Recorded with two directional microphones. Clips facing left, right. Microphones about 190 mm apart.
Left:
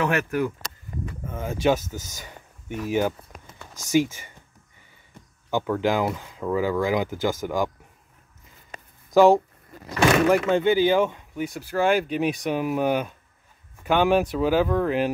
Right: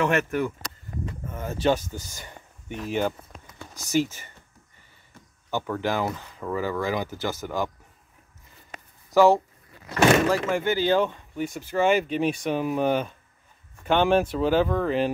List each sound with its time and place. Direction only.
1.3 s speech: 10° left (ahead or behind)
5.5 s speech: 15° left (ahead or behind)
9.1 s speech: 15° left (ahead or behind)